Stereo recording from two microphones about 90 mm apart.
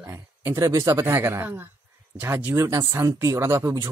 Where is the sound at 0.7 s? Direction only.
40° right (ahead or behind).